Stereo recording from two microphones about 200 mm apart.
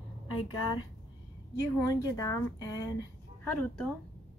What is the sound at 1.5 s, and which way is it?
A woman's voice, 15° left (ahead or behind).